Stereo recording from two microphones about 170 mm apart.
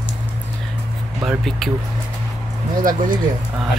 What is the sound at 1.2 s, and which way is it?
Speech, centre (ahead or behind).